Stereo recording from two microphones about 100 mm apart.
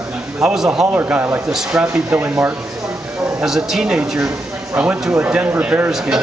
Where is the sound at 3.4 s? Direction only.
5° right (ahead or behind).